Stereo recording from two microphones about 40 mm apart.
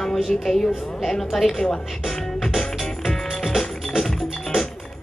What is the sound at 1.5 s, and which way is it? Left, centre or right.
Speech, left.